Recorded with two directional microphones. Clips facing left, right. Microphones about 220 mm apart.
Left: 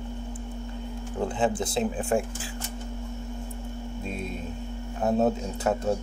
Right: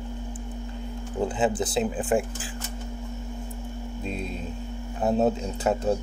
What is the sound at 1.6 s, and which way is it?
Speech, 5° right (ahead or behind).